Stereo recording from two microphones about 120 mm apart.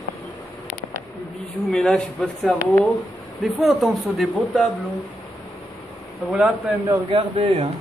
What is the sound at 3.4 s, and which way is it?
Speech, centre (ahead or behind).